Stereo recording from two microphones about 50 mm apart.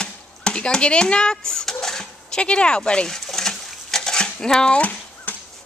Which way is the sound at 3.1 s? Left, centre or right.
Centre.